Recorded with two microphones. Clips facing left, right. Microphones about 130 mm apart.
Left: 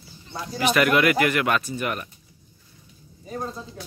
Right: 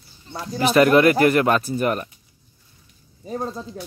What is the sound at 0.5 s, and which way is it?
Speech, 35° right (ahead or behind).